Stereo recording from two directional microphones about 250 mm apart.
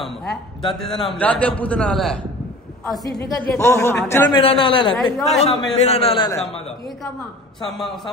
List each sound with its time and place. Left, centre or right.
0.7 s a man's voice: centre
3.4 s a man's voice: centre
4.9 s a man's voice: centre
5.4 s a man's voice: left